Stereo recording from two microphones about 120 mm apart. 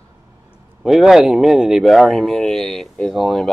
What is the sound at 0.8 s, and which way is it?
Speech, 5° right (ahead or behind).